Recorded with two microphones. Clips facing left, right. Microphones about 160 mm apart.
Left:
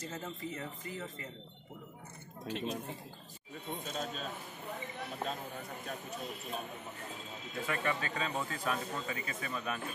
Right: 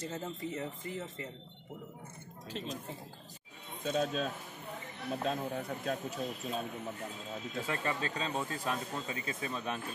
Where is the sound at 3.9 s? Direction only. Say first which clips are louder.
Right 10 dB; 75° right (ahead or behind).